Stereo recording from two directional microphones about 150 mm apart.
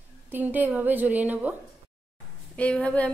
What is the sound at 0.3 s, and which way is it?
A woman's voice, 10° right (ahead or behind).